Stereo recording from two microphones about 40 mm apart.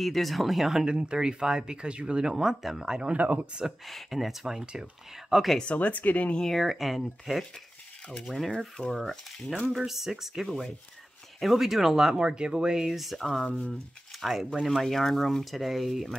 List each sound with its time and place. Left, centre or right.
0.0 s speech: centre
0.8 s speech: right
2.6 s speech: centre
3.0 s speech: right
3.8 s speech: centre
5.8 s speech: left
6.4 s speech: centre
8.5 s speech: centre
9.0 s speech: centre
9.8 s speech: centre
12.2 s speech: right; by 13.2 s centre
13.2 s speech: centre
14.2 s speech: centre
14.7 s speech: centre